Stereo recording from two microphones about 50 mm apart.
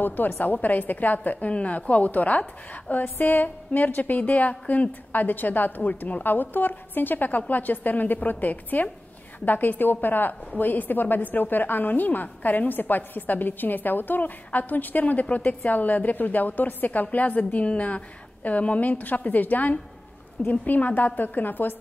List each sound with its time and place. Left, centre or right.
0.0 s a woman's voice: left